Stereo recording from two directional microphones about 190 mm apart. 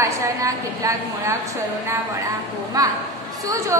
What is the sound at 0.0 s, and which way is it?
A woman's voice, 15° right (ahead or behind).